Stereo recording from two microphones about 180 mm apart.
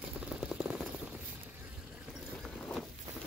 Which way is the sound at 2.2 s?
Centre (ahead or behind).